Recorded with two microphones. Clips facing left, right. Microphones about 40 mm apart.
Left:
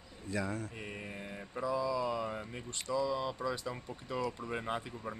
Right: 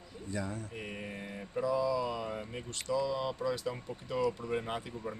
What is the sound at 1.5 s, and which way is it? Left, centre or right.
Speech, centre.